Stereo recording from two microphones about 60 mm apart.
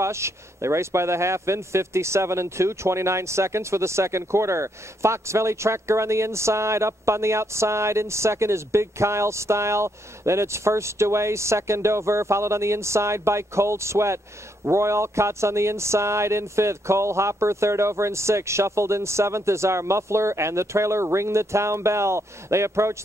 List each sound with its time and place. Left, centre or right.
0.0 s speech: right